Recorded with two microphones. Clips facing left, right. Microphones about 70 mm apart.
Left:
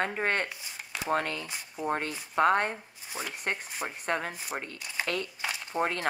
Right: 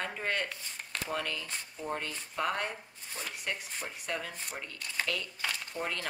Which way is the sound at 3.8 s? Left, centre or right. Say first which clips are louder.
Left 7 dB; left.